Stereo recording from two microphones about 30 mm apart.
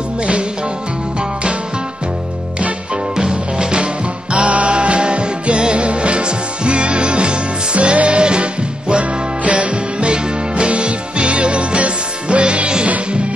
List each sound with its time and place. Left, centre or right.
0.2 s music: right
3.2 s music: right